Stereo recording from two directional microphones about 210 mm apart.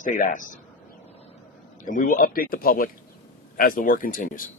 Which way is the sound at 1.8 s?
40° left (ahead or behind).